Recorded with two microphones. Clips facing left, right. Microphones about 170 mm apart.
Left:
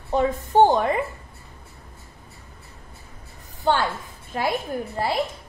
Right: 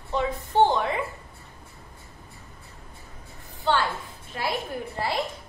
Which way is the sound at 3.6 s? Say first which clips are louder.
Left 3 dB; 45° left (ahead or behind).